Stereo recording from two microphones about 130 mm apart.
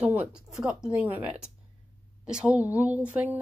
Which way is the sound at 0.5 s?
5° right (ahead or behind).